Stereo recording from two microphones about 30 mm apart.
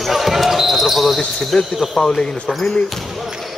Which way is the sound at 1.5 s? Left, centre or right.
Centre.